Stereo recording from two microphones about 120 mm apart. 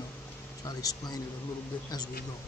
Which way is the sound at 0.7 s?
35° left (ahead or behind).